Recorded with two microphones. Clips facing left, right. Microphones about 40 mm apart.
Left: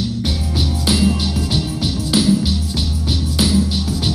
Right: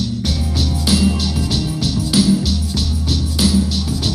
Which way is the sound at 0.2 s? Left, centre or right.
Centre.